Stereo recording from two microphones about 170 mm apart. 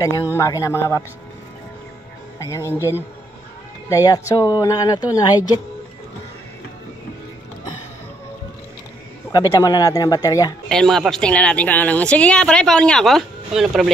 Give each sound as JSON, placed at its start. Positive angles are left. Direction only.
{"t": 0.4, "sound": "speech", "side_deg": 20}
{"t": 2.3, "sound": "speech", "side_deg": 20}
{"t": 9.3, "sound": "speech", "side_deg": 20}
{"t": 10.7, "sound": "speech", "side_deg": 5}